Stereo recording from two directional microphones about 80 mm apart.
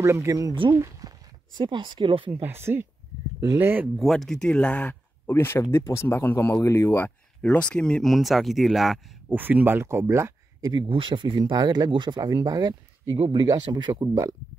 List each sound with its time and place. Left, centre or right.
0.0 s speech: right
0.7 s a sound: right
1.5 s speech: right
2.4 s speech: right
3.9 s speech: centre
5.3 s speech: left
7.4 s speech: centre
9.3 s speech: right
10.7 s speech: right
11.5 s speech: right
12.4 s speech: right
13.6 s speech: right
14.0 s speech: right